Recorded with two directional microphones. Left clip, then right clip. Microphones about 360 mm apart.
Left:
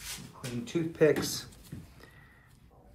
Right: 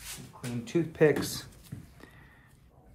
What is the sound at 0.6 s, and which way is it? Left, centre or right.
Speech, centre.